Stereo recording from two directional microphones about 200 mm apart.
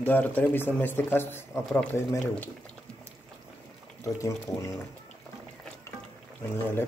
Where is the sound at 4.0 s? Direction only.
15° left (ahead or behind).